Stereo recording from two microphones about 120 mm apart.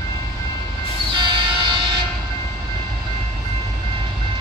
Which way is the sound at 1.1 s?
40° right (ahead or behind).